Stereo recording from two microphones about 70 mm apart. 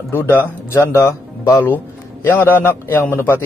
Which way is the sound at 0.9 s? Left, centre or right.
Left.